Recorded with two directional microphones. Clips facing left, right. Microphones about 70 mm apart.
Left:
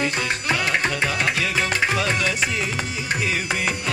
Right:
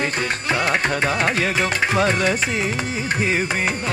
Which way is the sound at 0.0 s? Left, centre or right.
Right.